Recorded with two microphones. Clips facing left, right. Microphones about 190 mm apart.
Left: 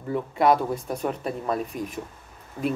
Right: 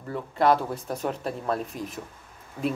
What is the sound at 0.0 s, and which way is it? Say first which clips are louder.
Speech: left 2 dB; 5° left (ahead or behind).